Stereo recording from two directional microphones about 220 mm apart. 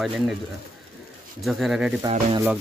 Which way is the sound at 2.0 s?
20° right (ahead or behind).